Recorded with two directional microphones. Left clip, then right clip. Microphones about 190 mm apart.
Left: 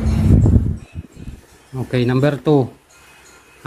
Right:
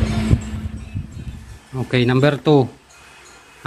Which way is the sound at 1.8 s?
5° left (ahead or behind).